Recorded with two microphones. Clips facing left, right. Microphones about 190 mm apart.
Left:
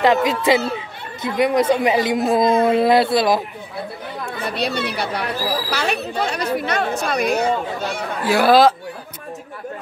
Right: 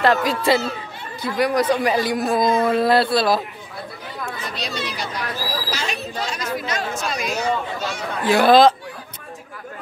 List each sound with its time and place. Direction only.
0.0 s speech: 20° left (ahead or behind)
4.3 s speech: 60° left (ahead or behind)
8.2 s speech: 10° left (ahead or behind)